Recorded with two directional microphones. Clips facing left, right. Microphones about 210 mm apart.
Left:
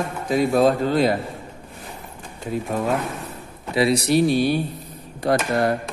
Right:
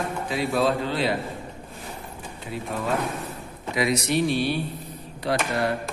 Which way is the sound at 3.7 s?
30° left (ahead or behind).